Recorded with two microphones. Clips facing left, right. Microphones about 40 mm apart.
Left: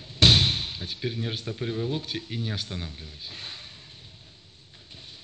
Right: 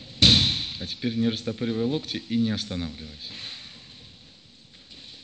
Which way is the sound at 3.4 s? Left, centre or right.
Left.